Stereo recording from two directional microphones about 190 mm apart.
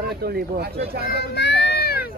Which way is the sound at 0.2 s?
55° right (ahead or behind).